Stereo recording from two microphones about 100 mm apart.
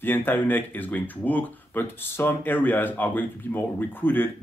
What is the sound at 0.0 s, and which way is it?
Speech, 20° left (ahead or behind).